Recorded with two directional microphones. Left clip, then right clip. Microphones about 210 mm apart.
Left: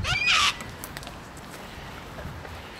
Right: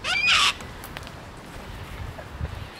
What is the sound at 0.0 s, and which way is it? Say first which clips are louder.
Crow: right 2 dB; 35° right (ahead or behind).